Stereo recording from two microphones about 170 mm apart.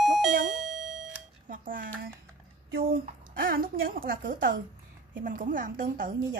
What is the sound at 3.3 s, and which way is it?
A woman's voice, 60° right (ahead or behind).